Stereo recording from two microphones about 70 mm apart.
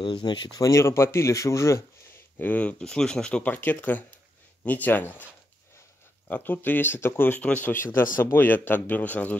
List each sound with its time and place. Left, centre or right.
0.2 s speech: left
0.6 s speech: left
2.3 s a man's voice: left
2.8 s speech: centre
3.5 s a man's voice: left
6.2 s a man's voice: left
7.4 s a man's voice: centre
7.7 s a man's voice: left